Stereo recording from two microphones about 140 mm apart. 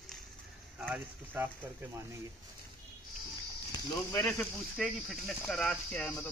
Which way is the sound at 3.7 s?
25° left (ahead or behind).